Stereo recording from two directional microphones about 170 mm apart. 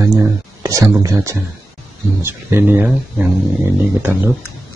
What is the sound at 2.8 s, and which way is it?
Speech, centre (ahead or behind).